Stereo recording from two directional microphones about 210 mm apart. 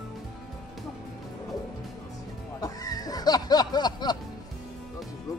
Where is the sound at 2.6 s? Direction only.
15° left (ahead or behind).